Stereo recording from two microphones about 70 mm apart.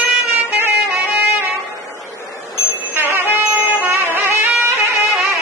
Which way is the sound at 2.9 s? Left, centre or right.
Right.